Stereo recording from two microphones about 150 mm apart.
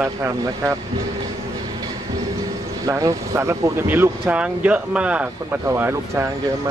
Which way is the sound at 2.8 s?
20° right (ahead or behind).